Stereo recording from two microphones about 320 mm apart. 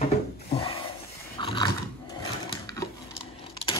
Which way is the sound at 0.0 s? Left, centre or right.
Centre.